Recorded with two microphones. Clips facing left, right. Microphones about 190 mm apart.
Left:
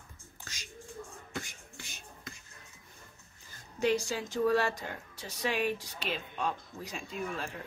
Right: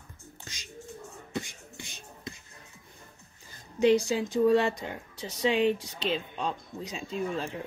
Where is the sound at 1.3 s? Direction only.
20° right (ahead or behind).